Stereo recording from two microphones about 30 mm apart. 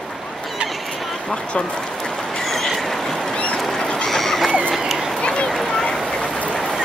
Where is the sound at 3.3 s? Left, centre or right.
Left.